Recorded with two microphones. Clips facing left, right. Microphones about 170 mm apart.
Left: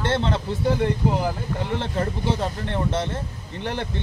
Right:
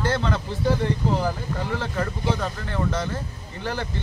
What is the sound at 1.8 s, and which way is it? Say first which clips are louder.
Speech: left 2 dB; 25° left (ahead or behind).